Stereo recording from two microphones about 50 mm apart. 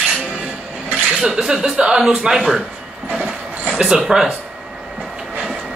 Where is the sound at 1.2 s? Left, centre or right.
Centre.